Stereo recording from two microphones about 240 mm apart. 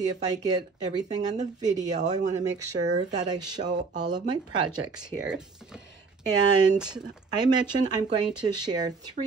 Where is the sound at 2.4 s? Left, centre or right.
Centre.